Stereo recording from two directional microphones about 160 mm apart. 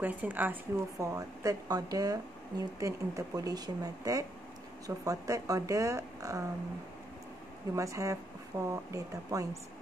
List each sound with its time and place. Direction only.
0.0 s speech: 10° right (ahead or behind)
7.7 s speech: 20° right (ahead or behind)